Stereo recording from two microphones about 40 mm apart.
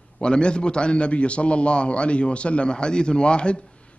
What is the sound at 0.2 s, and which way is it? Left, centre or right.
A man's voice, left.